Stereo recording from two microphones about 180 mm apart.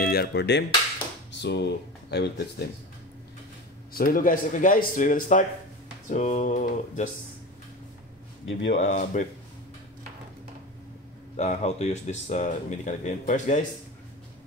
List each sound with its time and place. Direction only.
0.0 s music: 60° left (ahead or behind)
1.4 s speech: 70° left (ahead or behind)
3.9 s speech: 50° left (ahead or behind)
8.7 s speech: 45° left (ahead or behind)
11.3 s speech: 40° left (ahead or behind)